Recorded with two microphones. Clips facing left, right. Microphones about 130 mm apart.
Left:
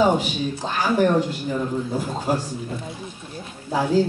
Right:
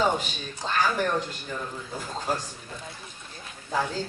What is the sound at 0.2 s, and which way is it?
Speech, 10° left (ahead or behind).